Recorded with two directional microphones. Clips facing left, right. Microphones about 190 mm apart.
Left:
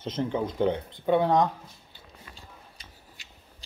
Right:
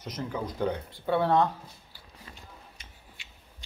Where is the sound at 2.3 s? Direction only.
30° left (ahead or behind).